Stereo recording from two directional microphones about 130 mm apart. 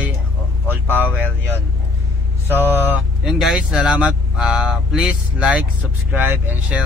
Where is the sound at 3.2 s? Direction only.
Centre (ahead or behind).